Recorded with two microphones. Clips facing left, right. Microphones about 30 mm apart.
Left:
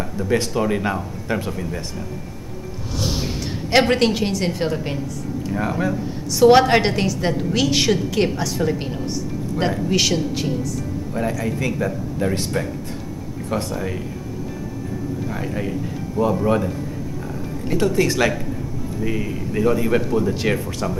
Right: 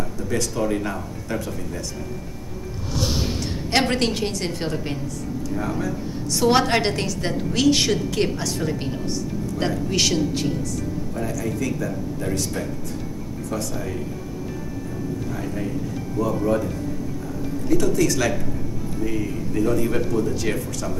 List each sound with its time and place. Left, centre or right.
0.2 s speech: left
3.7 s a woman's voice: centre
5.5 s speech: left
6.4 s a woman's voice: centre
11.1 s speech: left
15.3 s speech: left
17.6 s speech: left